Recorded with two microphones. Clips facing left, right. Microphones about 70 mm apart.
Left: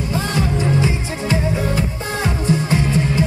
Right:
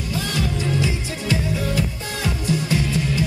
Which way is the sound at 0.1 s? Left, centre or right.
Left.